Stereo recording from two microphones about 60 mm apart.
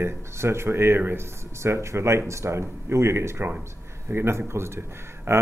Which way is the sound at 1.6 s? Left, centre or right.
Right.